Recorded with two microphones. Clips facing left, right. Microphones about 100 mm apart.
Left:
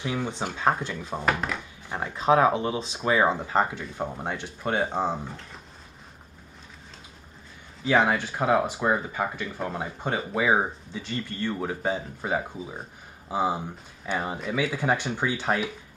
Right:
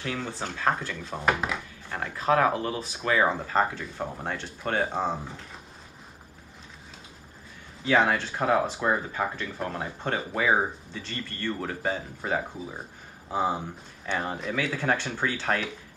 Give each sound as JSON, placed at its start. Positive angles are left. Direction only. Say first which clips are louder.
{"t": 0.0, "sound": "speech", "louder": "left 3 dB", "side_deg": 15}
{"t": 1.2, "sound": "speech", "louder": "right 1 dB", "side_deg": 0}
{"t": 1.9, "sound": "speech", "louder": "left 3 dB", "side_deg": 20}
{"t": 7.8, "sound": "speech", "louder": "left 1 dB", "side_deg": 10}